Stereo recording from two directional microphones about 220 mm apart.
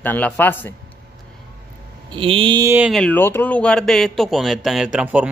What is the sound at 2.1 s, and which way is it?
Mantra, 25° right (ahead or behind).